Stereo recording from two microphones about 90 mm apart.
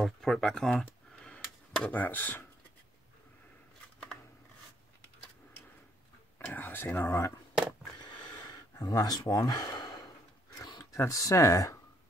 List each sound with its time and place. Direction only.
0.0 s a sound: 5° left (ahead or behind)
1.9 s speech: 20° left (ahead or behind)
6.3 s speech: 20° left (ahead or behind)
7.0 s speech: 35° left (ahead or behind)
8.7 s speech: 40° left (ahead or behind)
10.8 s speech: 30° left (ahead or behind)